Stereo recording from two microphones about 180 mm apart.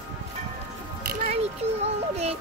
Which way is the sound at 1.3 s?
35° right (ahead or behind).